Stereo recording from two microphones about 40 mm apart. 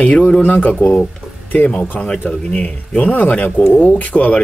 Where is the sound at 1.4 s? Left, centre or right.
Left.